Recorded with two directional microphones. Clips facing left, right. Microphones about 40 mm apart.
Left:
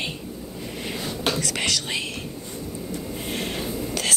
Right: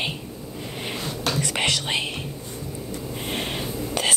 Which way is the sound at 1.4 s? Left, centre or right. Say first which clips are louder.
Right 2 dB; right.